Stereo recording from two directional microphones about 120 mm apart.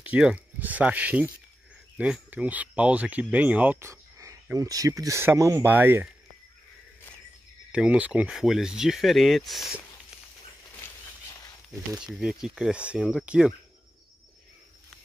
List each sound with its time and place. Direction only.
0.0 s speech: 10° right (ahead or behind)
7.7 s speech: 10° right (ahead or behind)
12.2 s speech: 5° right (ahead or behind)